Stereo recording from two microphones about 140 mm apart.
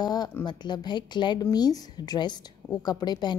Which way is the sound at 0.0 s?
30° left (ahead or behind).